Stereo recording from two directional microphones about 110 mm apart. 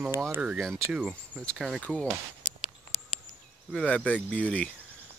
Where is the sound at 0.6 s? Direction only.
5° left (ahead or behind).